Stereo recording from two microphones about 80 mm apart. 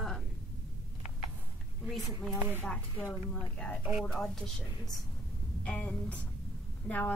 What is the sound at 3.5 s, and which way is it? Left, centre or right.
A woman's voice, centre.